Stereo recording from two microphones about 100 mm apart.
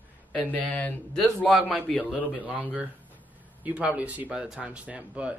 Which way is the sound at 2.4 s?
15° right (ahead or behind).